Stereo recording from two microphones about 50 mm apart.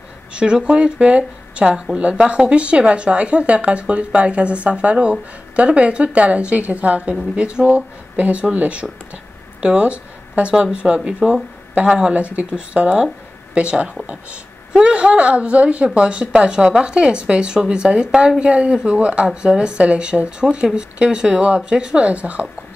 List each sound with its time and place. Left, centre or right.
0.3 s a woman's voice: centre